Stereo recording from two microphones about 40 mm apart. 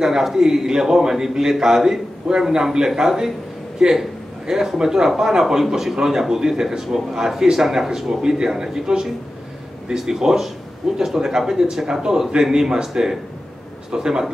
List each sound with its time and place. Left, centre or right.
0.0 s speech: centre